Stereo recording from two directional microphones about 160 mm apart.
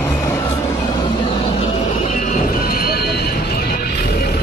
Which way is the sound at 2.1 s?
55° left (ahead or behind).